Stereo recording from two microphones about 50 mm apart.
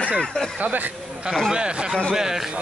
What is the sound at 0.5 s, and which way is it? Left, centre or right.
Speech, right.